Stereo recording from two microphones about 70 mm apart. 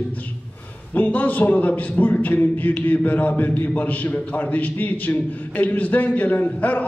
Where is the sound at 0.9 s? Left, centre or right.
Left.